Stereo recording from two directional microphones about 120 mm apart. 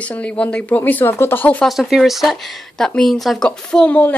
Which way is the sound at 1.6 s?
Centre (ahead or behind).